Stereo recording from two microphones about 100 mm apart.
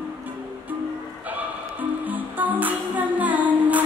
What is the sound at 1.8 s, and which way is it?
Music, 15° right (ahead or behind).